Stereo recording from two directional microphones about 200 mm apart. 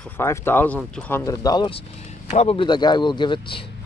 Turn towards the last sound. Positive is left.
turn(degrees=25)  # may be behind; listen again after turning